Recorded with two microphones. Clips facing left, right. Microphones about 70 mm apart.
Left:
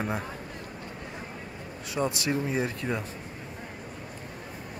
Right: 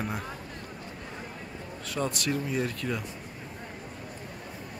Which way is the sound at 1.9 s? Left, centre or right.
Centre.